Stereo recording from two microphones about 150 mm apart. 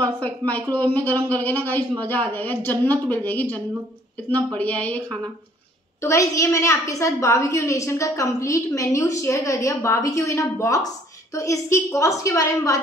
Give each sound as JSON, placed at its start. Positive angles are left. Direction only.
{"t": 0.0, "sound": "a woman's voice", "side_deg": 10}
{"t": 5.9, "sound": "a woman's voice", "side_deg": 20}